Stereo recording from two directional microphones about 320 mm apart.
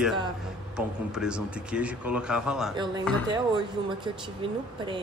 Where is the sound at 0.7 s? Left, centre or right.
Centre.